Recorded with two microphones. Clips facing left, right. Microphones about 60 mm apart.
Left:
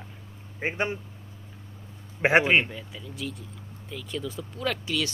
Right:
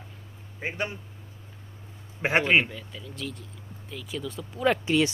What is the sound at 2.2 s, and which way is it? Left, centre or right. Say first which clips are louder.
Speech: left 4 dB; centre.